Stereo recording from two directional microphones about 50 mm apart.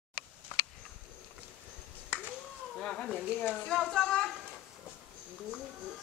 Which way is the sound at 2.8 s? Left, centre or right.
Centre.